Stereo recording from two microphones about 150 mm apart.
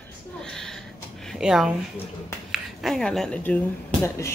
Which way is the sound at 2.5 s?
Centre (ahead or behind).